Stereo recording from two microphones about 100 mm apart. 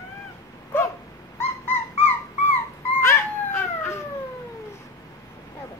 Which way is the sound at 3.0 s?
25° left (ahead or behind).